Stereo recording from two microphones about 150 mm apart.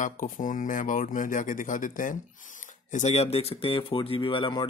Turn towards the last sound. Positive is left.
turn(degrees=35)  # may be behind; listen again after turning